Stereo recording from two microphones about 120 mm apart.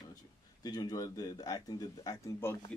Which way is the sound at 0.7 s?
35° left (ahead or behind).